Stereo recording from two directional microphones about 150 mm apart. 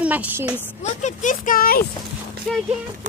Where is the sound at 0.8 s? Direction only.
55° left (ahead or behind); by 1.8 s 75° left (ahead or behind).